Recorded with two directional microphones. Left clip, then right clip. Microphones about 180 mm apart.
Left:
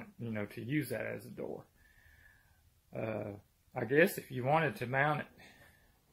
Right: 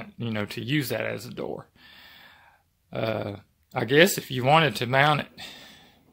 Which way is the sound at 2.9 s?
30° right (ahead or behind).